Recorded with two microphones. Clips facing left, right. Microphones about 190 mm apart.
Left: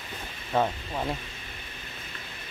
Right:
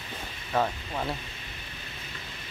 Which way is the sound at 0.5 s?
10° left (ahead or behind).